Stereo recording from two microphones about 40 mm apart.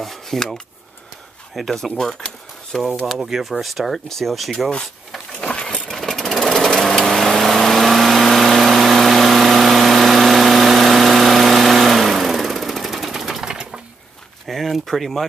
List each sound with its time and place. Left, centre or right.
0.0 s filing: centre
1.7 s speech: centre
3.2 s speech: centre
5.3 s a sound: left
5.9 s sewing machine: centre
14.4 s a sound: centre